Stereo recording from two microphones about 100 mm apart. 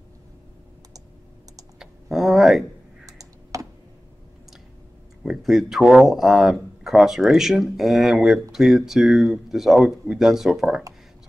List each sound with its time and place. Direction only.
1.8 s a sound: 5° right (ahead or behind)
3.1 s computer keyboard: 35° right (ahead or behind)
5.2 s speech: 5° right (ahead or behind)